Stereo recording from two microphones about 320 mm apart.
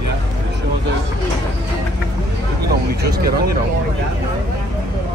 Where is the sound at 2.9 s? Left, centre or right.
Right.